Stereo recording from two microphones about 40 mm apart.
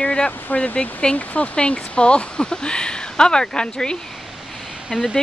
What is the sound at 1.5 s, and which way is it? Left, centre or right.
Speech, left.